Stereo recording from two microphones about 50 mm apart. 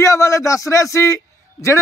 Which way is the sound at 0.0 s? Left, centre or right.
Left.